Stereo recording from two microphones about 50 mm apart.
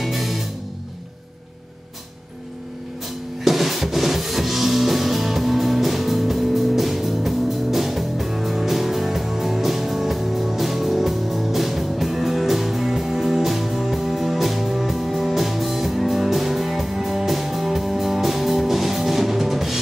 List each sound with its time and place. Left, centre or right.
0.0 s music: centre
3.4 s music: centre